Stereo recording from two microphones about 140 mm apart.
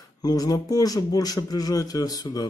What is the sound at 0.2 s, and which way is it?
A man's voice, 25° left (ahead or behind).